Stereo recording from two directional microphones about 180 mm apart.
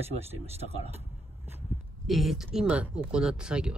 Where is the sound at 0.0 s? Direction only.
35° right (ahead or behind).